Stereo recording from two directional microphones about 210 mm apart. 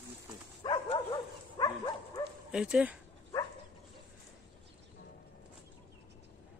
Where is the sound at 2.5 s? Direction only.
5° right (ahead or behind).